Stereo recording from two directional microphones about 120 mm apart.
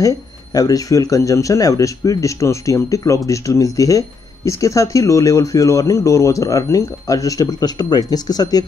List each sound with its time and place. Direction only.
0.6 s speech: 30° left (ahead or behind)